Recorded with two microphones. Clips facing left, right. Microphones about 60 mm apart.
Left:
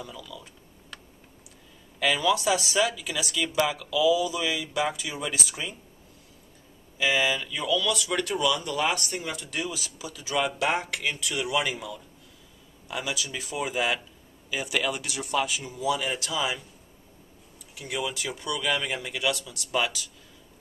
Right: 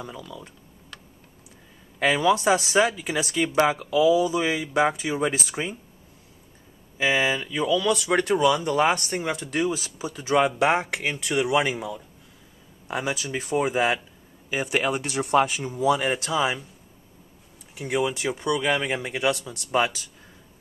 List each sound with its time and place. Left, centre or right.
0.0 s speech: right
2.0 s speech: right
7.0 s speech: right
17.7 s speech: right